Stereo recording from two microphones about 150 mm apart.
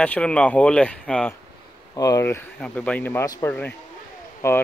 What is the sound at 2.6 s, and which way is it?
Speech, 10° left (ahead or behind).